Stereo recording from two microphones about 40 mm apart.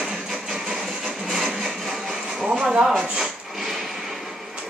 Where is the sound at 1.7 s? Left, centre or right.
Centre.